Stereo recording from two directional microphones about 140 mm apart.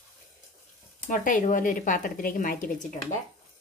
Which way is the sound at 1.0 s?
70° left (ahead or behind).